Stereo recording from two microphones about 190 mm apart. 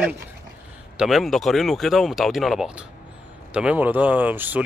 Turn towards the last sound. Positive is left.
turn(degrees=-10)  # may be behind; listen again after turning